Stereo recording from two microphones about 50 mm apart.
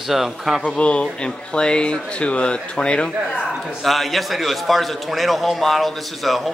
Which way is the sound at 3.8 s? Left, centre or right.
Centre.